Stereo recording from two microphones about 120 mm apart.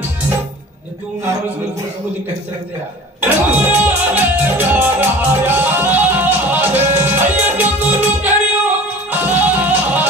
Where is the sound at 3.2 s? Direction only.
15° right (ahead or behind).